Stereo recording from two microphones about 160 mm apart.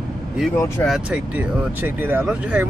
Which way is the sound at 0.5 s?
15° left (ahead or behind).